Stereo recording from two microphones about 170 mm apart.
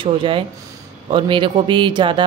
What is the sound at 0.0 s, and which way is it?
Speech, 30° right (ahead or behind).